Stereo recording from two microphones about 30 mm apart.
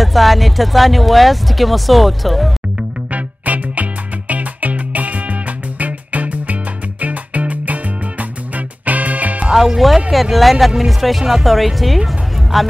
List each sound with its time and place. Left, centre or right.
0.0 s speech: centre
3.1 s music: right
9.5 s music: centre
10.3 s speech: centre
12.1 s music: centre